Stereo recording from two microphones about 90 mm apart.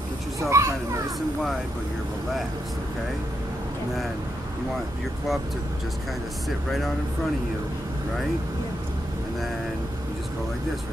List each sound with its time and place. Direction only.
0.4 s a child's voice: 35° right (ahead or behind)